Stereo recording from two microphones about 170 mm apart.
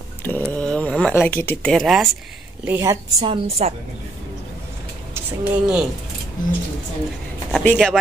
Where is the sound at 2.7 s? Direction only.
15° right (ahead or behind); by 3.7 s 35° right (ahead or behind).